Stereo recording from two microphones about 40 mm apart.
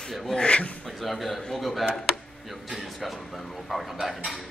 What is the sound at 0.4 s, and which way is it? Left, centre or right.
Speech, left.